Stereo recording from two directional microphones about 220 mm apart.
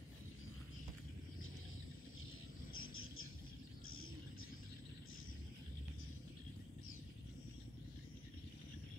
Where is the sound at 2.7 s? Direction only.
70° left (ahead or behind).